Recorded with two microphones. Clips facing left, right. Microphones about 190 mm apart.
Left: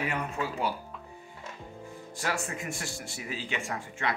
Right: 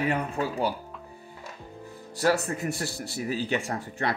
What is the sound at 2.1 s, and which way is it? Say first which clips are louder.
Speech: right 9 dB; 40° right (ahead or behind).